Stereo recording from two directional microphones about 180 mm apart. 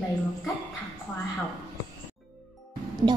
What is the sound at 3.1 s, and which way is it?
Speech, 25° right (ahead or behind).